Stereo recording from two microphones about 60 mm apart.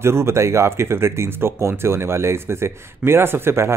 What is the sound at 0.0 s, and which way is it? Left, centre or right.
Speech, right.